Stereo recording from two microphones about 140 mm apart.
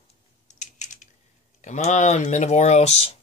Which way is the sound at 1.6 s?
60° left (ahead or behind).